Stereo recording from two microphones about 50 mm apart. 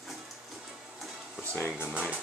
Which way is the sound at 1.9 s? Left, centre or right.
Right.